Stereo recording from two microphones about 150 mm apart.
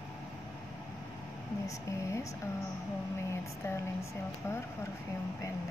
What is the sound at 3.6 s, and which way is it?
Speech, 20° left (ahead or behind).